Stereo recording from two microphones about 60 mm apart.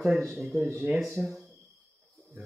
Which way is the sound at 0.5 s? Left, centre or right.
Right.